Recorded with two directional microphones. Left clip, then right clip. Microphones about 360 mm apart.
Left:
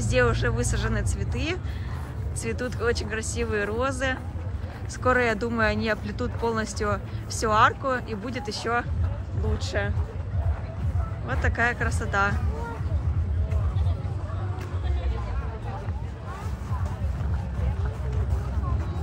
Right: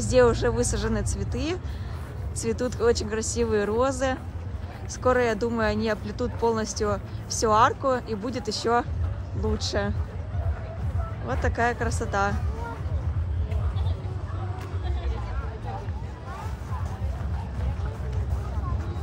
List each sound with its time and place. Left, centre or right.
0.0 s speech: centre
11.2 s speech: centre